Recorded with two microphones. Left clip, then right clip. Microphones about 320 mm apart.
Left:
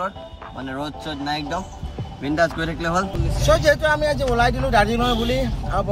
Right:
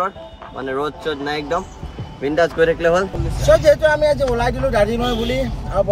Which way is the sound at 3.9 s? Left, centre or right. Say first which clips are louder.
Right 5 dB; left.